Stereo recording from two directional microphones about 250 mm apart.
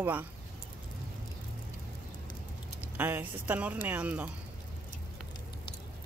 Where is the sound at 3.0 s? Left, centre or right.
Centre.